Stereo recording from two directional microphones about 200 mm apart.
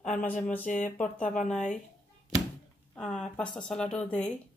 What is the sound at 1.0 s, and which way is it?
Speech, 5° left (ahead or behind).